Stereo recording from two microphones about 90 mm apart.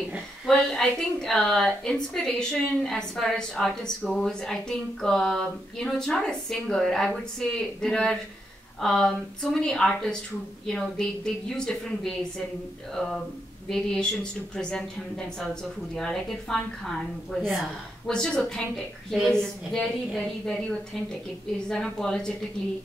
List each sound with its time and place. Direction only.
0.5 s a woman's voice: 5° left (ahead or behind)